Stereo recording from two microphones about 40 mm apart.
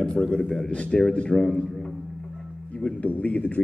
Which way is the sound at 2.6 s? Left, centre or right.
Left.